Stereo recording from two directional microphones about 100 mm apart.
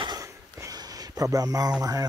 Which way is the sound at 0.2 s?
35° right (ahead or behind).